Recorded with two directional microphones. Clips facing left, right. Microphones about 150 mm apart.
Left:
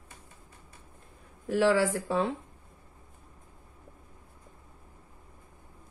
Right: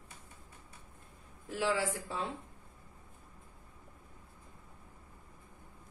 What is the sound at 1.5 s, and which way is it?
Speech, 70° left (ahead or behind).